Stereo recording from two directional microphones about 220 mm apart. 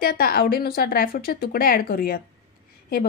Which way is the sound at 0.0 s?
45° left (ahead or behind).